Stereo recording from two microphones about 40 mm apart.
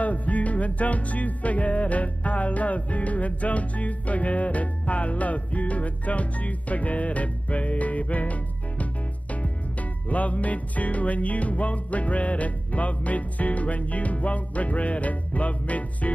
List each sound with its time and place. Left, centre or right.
0.0 s music: left